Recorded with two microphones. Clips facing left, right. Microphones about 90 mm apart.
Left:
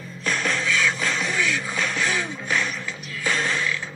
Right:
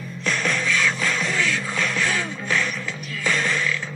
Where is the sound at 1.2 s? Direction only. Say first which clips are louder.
Even; 15° left (ahead or behind).